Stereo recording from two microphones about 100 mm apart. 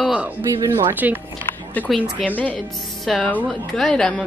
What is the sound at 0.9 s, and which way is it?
Speech, 20° right (ahead or behind).